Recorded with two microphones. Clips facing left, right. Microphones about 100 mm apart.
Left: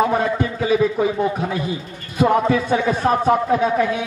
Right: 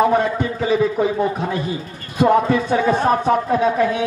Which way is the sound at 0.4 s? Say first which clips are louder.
Even; centre (ahead or behind).